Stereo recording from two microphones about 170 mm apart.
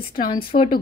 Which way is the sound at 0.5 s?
45° left (ahead or behind).